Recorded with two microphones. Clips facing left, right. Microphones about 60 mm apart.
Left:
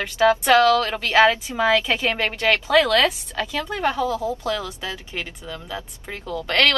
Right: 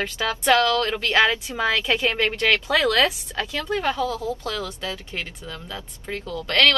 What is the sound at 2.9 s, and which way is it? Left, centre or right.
Speech, centre.